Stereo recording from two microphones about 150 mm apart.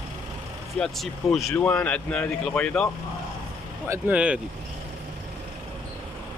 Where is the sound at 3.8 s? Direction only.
20° right (ahead or behind).